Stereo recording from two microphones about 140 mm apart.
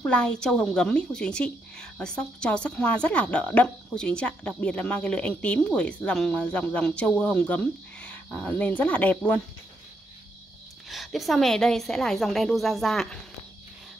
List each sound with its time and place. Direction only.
0.0 s a woman's voice: 10° left (ahead or behind)
10.9 s a woman's voice: centre (ahead or behind)